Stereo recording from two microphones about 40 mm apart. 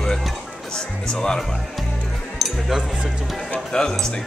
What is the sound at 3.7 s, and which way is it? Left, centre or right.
Speech, centre.